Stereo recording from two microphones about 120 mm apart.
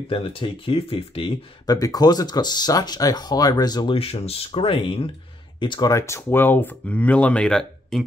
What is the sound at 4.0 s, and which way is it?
Speech, 55° left (ahead or behind).